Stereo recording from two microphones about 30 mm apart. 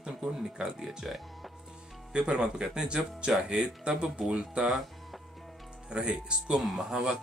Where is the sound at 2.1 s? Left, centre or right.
Right.